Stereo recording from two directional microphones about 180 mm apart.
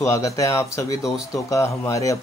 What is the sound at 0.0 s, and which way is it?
Speech, 15° left (ahead or behind).